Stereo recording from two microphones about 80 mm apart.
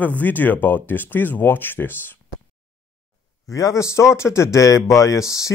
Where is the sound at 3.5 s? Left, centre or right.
Left.